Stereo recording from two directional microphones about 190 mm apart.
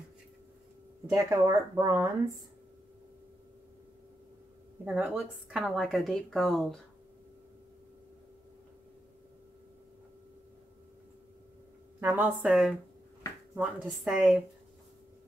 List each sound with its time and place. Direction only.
1.0 s speech: 15° right (ahead or behind)
4.8 s speech: 5° right (ahead or behind)
12.0 s speech: 10° right (ahead or behind)